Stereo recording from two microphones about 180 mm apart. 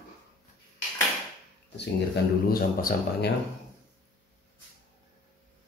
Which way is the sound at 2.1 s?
60° left (ahead or behind).